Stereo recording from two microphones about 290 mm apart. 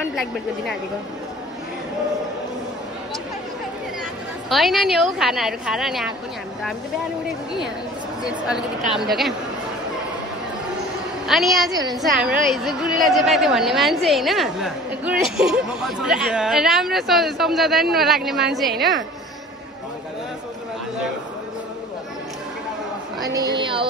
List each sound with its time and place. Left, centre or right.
0.1 s a woman's voice: centre
4.5 s a woman's voice: centre
8.5 s a woman's voice: centre
11.2 s a woman's voice: centre
23.3 s speech: centre